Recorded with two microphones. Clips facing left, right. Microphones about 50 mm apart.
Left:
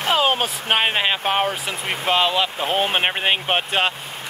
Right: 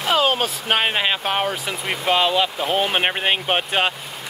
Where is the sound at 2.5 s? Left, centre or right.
Left.